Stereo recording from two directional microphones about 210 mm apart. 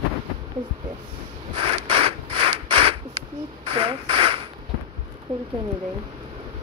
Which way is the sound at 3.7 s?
25° right (ahead or behind).